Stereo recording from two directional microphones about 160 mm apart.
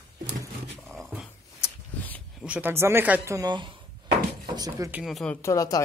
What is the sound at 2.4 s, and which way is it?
Speech, 10° right (ahead or behind).